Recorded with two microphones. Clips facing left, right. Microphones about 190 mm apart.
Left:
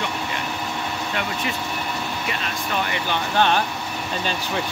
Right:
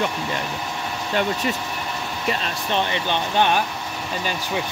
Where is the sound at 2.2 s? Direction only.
25° right (ahead or behind).